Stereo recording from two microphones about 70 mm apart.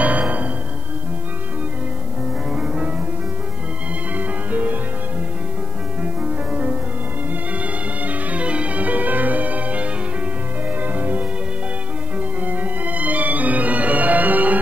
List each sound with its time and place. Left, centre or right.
0.0 s music: right
2.5 s music: centre
4.1 s music: right
6.5 s music: right